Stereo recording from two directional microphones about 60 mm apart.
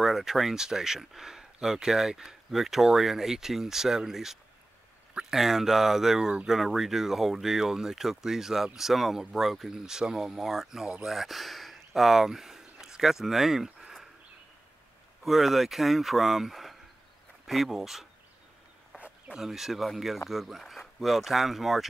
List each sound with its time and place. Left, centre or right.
0.0 s speech: centre
15.2 s speech: centre
18.9 s a sound: right
19.3 s speech: centre